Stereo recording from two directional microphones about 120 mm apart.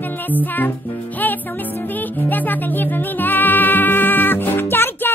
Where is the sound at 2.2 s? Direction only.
15° left (ahead or behind).